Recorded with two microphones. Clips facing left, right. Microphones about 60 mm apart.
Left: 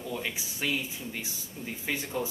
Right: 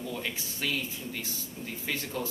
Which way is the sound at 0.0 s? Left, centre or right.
Centre.